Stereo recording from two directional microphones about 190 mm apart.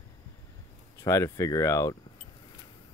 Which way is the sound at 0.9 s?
15° left (ahead or behind).